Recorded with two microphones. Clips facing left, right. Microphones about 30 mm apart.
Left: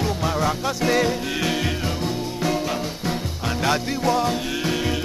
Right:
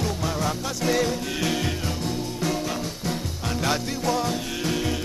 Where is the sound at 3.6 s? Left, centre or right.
Centre.